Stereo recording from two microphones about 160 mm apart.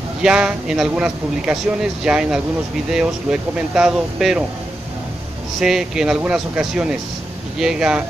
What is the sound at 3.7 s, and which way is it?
Speech, 5° right (ahead or behind).